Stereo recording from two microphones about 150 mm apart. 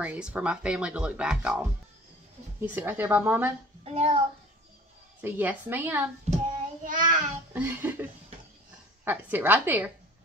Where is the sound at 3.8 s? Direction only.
45° right (ahead or behind).